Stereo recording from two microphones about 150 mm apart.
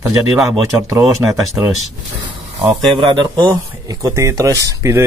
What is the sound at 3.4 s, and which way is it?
Speech, 20° right (ahead or behind).